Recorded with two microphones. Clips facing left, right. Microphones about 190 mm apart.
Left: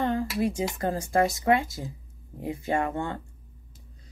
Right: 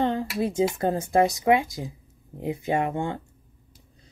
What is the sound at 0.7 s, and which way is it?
Speech, 25° right (ahead or behind).